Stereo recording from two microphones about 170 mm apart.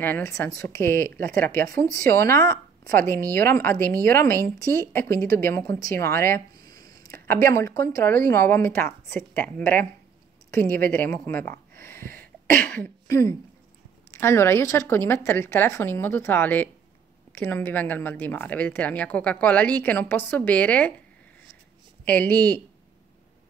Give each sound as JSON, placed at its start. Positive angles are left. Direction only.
{"t": 0.0, "sound": "speech", "side_deg": 15}
{"t": 11.2, "sound": "a sound", "side_deg": 10}
{"t": 14.1, "sound": "speech", "side_deg": 15}
{"t": 22.0, "sound": "speech", "side_deg": 10}